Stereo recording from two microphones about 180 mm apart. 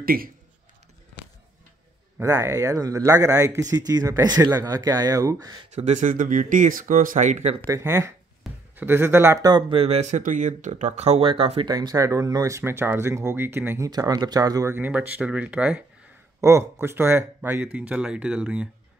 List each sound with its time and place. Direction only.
0.0 s a man's voice: 55° right (ahead or behind)
2.1 s speech: 15° right (ahead or behind)
5.8 s speech: 40° right (ahead or behind)
7.6 s speech: 15° right (ahead or behind); by 11.7 s 30° right (ahead or behind)
11.7 s speech: 20° right (ahead or behind)